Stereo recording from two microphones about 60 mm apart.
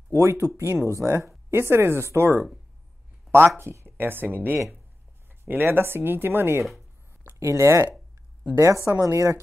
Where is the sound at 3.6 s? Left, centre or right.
Right.